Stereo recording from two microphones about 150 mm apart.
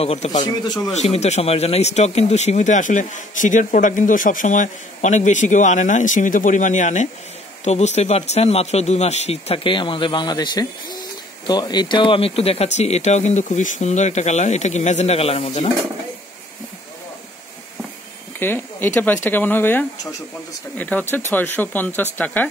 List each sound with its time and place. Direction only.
0.0 s speech: 45° left (ahead or behind)
18.4 s speech: 15° left (ahead or behind)